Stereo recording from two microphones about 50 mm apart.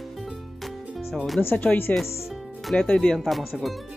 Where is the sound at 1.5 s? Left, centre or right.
Left.